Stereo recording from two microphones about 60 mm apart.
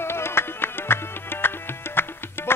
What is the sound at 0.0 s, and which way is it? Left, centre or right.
Music, left.